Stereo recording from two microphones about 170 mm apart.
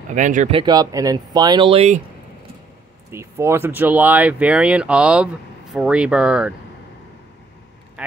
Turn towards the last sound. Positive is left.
turn(degrees=-5)  # may be behind; listen again after turning